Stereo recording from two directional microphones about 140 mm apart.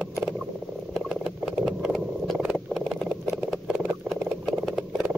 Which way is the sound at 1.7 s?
Centre (ahead or behind).